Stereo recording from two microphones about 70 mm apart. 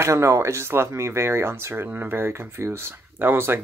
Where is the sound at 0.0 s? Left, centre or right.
Right.